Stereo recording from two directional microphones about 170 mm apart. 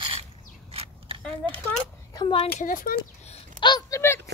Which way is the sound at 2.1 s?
20° left (ahead or behind).